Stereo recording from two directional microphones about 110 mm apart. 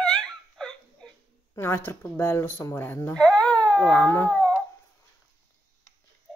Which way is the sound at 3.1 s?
10° left (ahead or behind).